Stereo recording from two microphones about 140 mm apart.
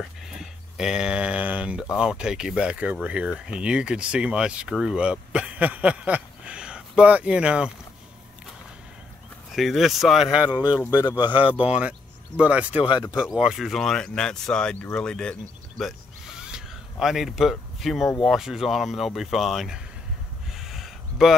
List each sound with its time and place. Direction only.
0.4 s speech: 5° right (ahead or behind)
9.6 s speech: centre (ahead or behind)
10.9 s speech: 30° left (ahead or behind)
12.4 s speech: 10° right (ahead or behind)
12.8 s speech: 35° left (ahead or behind)
13.1 s speech: 5° right (ahead or behind)
16.3 s a sound: 5° right (ahead or behind)
18.2 s speech: centre (ahead or behind)
20.5 s a sound: centre (ahead or behind)